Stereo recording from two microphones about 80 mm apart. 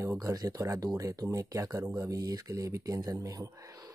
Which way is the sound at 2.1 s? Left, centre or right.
Right.